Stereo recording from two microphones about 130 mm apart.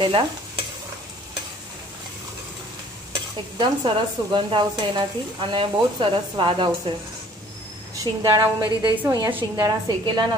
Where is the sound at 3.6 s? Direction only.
35° right (ahead or behind).